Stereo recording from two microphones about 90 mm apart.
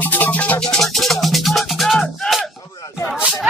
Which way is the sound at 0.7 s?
Centre (ahead or behind).